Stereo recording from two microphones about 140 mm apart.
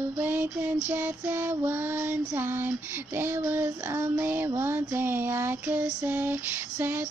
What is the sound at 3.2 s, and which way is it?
Child singing, 15° right (ahead or behind).